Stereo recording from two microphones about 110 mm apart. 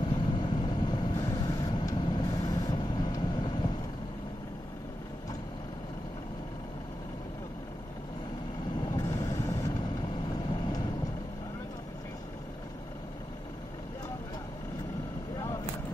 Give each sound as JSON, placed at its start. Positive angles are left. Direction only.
{"t": 0.0, "sound": "vehicle", "side_deg": 45}
{"t": 2.2, "sound": "vehicle", "side_deg": 35}
{"t": 9.0, "sound": "vehicle", "side_deg": 30}
{"t": 10.4, "sound": "vehicle", "side_deg": 45}
{"t": 15.3, "sound": "vehicle", "side_deg": 30}